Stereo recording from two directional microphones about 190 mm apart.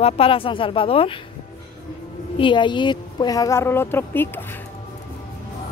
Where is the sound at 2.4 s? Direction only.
25° left (ahead or behind).